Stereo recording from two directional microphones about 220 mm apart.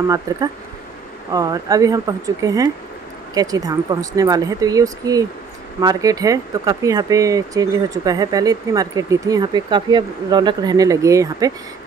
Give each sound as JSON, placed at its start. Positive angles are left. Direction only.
{"t": 0.3, "sound": "speech", "side_deg": -15}